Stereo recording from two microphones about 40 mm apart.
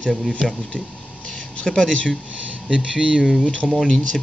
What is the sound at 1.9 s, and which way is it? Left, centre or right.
Speech, left.